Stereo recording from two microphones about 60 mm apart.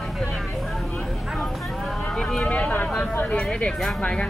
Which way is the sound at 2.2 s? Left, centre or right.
Centre.